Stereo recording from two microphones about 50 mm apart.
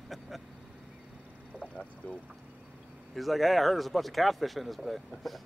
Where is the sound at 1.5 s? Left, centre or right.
Left.